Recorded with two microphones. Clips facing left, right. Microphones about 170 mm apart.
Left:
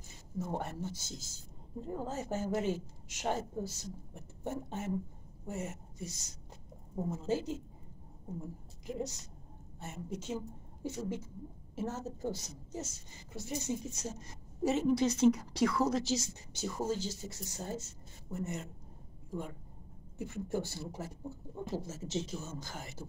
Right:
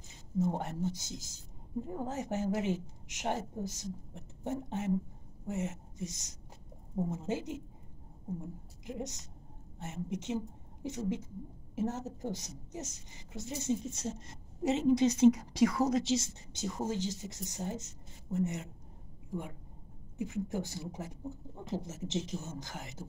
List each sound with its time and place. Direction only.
0.4 s a woman's voice: 20° right (ahead or behind)
8.8 s a woman's voice: 20° right (ahead or behind)
20.2 s a woman's voice: 15° right (ahead or behind)